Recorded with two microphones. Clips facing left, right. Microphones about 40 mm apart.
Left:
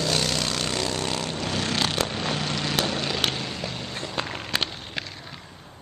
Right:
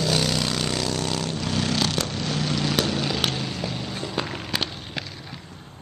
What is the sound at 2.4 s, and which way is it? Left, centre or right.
Vehicle, centre.